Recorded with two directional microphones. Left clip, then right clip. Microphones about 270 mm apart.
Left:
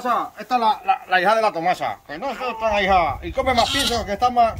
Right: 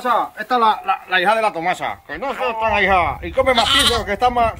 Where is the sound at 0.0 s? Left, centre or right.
Centre.